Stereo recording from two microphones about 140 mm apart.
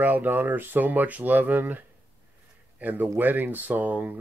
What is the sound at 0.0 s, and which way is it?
Speech, 15° right (ahead or behind).